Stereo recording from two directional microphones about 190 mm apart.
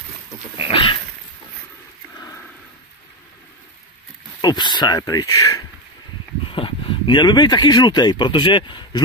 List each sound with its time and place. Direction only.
0.7 s dog: 25° left (ahead or behind)
2.1 s a sound: 20° left (ahead or behind)
4.4 s speech: 20° left (ahead or behind)